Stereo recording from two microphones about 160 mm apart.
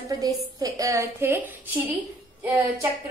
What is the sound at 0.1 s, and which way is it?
A woman's voice, 20° right (ahead or behind).